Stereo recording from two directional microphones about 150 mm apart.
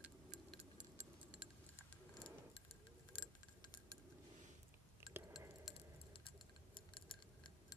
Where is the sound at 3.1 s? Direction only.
30° left (ahead or behind).